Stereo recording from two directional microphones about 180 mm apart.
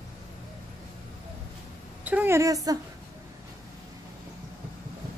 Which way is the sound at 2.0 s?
10° right (ahead or behind).